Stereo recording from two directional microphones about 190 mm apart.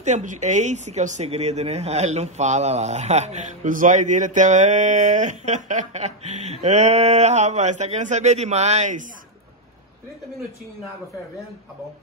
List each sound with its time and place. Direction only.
0.0 s speech: 40° right (ahead or behind)